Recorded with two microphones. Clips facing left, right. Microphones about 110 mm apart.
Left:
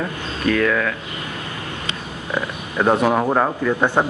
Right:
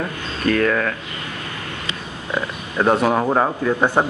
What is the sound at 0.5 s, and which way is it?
Speech, 40° right (ahead or behind).